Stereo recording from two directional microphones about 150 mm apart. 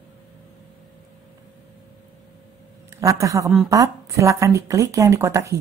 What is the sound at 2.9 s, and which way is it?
Speech, 20° right (ahead or behind).